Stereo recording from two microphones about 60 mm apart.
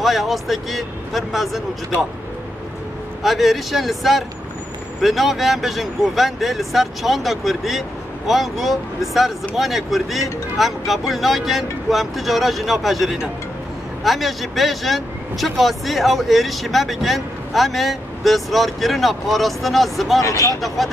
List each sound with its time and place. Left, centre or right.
0.0 s speech: centre
3.2 s speech: centre
20.2 s speech: left
20.6 s speech: centre